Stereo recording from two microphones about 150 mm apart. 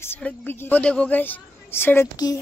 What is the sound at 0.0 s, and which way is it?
A woman's voice, 10° left (ahead or behind).